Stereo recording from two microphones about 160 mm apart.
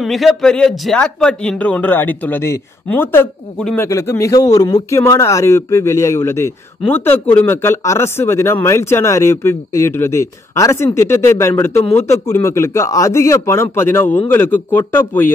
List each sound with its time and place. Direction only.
0.0 s speech: centre (ahead or behind)
3.8 s speech: 15° left (ahead or behind)